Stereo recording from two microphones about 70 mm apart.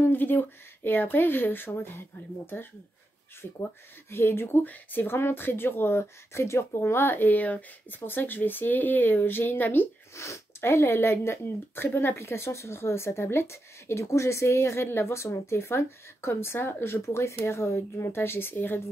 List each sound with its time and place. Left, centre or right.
0.0 s speech: left
4.1 s speech: left
10.1 s speech: left